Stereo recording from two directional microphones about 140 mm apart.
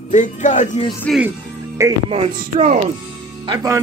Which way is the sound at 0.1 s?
60° left (ahead or behind).